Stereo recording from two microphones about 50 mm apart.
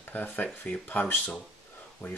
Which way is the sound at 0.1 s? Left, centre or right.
Left.